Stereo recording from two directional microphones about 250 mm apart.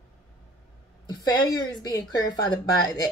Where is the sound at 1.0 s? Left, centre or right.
Centre.